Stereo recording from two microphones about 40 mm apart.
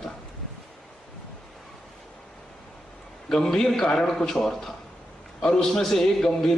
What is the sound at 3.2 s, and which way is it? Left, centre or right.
A man's voice, centre.